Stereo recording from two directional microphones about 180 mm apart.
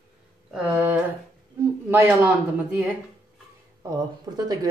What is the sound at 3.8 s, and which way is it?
Speech, 20° right (ahead or behind).